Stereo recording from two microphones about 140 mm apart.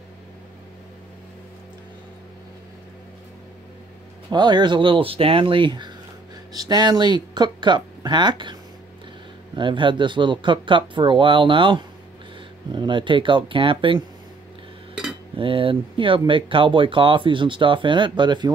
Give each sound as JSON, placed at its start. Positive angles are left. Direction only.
{"t": 4.3, "sound": "speech", "side_deg": -30}
{"t": 9.6, "sound": "speech", "side_deg": -35}
{"t": 15.0, "sound": "cutlery", "side_deg": -5}
{"t": 15.3, "sound": "speech", "side_deg": -40}